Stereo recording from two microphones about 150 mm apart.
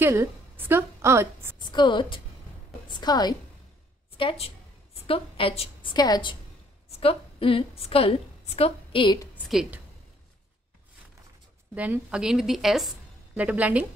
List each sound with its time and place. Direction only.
0.0 s a sound: 15° right (ahead or behind)
1.6 s a woman's voice: 30° left (ahead or behind)
2.9 s a sound: 30° left (ahead or behind)
4.2 s a woman's voice: 35° left (ahead or behind)
6.9 s a woman's voice: 40° left (ahead or behind)
9.5 s a woman's voice: 5° right (ahead or behind)
11.7 s a woman's voice: 10° right (ahead or behind)